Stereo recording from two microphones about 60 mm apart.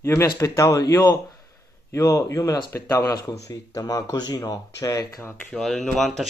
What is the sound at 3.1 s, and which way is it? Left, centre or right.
Speech, left.